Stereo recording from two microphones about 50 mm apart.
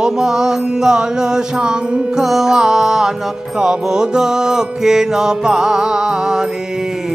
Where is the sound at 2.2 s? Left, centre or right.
Centre.